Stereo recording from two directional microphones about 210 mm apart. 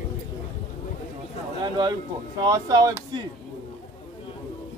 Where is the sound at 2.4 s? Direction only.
20° right (ahead or behind).